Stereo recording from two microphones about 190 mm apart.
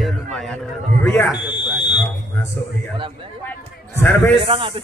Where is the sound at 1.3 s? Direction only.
25° left (ahead or behind).